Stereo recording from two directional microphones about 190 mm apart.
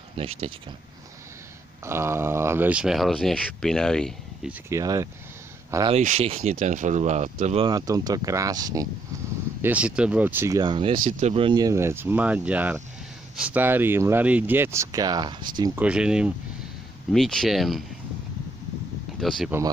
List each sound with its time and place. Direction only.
0.2 s speech: 30° right (ahead or behind)
1.9 s speech: 15° right (ahead or behind); by 4.5 s 5° left (ahead or behind)
4.5 s speech: 15° right (ahead or behind)
5.9 s speech: 35° right (ahead or behind)
7.6 s speech: 20° right (ahead or behind)
9.6 s speech: 5° right (ahead or behind); by 11.0 s 25° right (ahead or behind)
11.1 s speech: 35° right (ahead or behind); by 15.8 s 20° right (ahead or behind)
15.8 s speech: 5° right (ahead or behind)
19.1 s speech: centre (ahead or behind)